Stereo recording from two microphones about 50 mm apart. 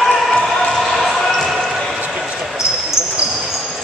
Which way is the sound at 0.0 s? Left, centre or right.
Centre.